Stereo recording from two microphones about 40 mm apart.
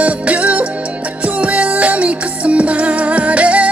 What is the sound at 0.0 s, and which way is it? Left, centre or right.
Music, right.